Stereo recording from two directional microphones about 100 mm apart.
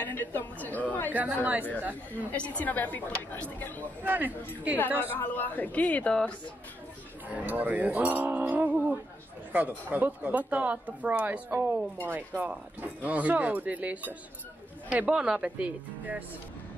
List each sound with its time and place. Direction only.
0.0 s a woman's voice: 20° left (ahead or behind)
1.1 s a woman's voice: 15° right (ahead or behind)
2.3 s a woman's voice: 15° left (ahead or behind)
4.0 s a woman's voice: 20° right (ahead or behind)
4.7 s a woman's voice: 20° left (ahead or behind)
7.3 s a woman's voice: 15° right (ahead or behind)